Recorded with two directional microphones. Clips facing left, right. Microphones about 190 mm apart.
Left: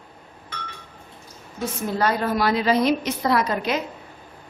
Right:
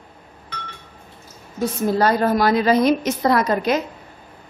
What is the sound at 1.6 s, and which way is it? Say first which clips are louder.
A woman's voice: right 5 dB; 35° right (ahead or behind).